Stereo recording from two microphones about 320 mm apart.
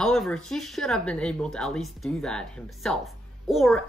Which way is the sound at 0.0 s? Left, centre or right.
Centre.